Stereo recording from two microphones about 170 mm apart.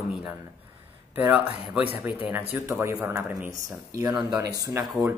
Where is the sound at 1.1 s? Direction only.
10° right (ahead or behind).